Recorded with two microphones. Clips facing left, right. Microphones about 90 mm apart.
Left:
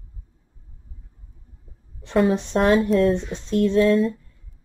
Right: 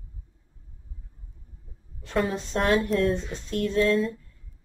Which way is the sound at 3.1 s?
20° left (ahead or behind).